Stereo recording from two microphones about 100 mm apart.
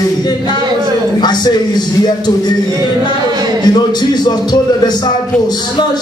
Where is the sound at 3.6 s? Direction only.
45° left (ahead or behind).